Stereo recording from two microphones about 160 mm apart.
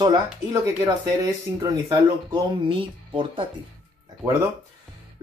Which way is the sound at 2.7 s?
35° right (ahead or behind).